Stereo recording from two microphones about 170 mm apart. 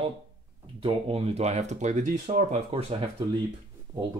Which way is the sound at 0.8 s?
35° right (ahead or behind).